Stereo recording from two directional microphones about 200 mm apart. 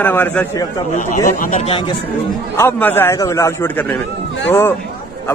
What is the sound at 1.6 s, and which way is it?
Speech, 25° left (ahead or behind).